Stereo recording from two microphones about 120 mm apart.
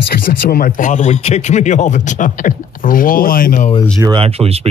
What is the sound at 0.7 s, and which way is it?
Speech, 90° left.